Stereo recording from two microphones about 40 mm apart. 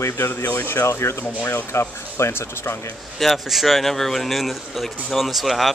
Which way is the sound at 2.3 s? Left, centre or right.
Left.